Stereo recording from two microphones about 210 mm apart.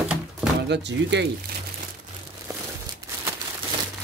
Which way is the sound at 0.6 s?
55° right (ahead or behind).